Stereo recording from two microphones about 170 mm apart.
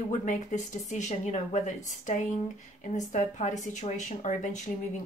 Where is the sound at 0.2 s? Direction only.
50° left (ahead or behind).